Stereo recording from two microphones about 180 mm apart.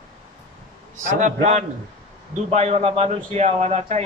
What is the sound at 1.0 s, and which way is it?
A man's voice, 40° right (ahead or behind).